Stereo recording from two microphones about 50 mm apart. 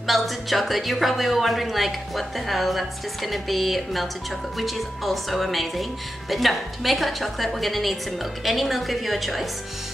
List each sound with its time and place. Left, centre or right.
0.0 s speech: centre